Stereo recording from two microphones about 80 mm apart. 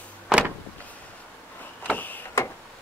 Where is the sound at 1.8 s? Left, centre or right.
Left.